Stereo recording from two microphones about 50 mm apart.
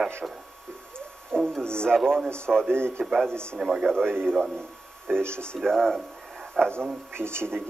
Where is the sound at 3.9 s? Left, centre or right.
Centre.